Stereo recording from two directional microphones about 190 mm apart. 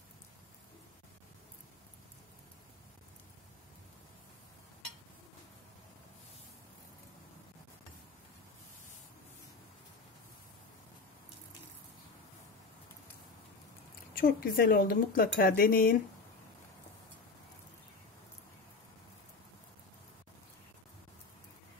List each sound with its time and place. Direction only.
14.1 s speech: 50° left (ahead or behind)